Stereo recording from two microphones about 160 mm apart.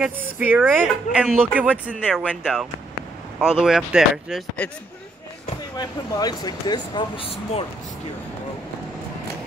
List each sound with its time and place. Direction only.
0.0 s speech: 10° right (ahead or behind)
4.6 s speech: 10° left (ahead or behind)
5.8 s speech: 25° left (ahead or behind)